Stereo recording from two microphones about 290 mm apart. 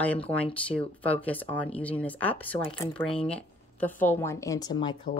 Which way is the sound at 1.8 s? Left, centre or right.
Centre.